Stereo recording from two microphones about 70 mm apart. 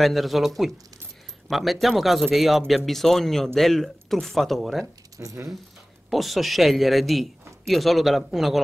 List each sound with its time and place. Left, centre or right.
0.0 s a man's voice: centre
1.5 s a man's voice: centre
5.1 s speech: right
6.0 s a man's voice: centre